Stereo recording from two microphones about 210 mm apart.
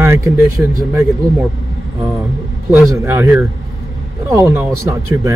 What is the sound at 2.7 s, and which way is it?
Speech, 10° right (ahead or behind).